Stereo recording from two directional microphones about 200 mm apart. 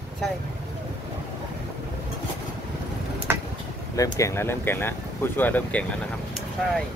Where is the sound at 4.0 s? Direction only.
15° left (ahead or behind).